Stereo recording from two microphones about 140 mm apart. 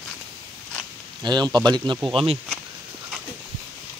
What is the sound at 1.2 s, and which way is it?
Speech, 30° right (ahead or behind).